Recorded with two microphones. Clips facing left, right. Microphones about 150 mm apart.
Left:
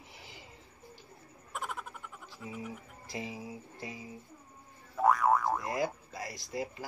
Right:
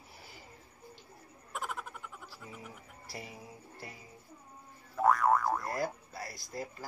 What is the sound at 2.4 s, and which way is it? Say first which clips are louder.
Speech: left 9 dB; centre (ahead or behind).